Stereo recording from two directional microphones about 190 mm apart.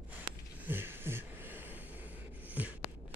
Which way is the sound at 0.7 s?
10° right (ahead or behind).